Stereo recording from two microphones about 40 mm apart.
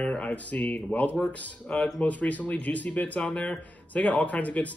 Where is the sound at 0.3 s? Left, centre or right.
Left.